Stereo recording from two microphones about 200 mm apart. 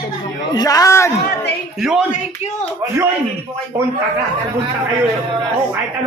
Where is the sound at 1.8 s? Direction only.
Centre (ahead or behind).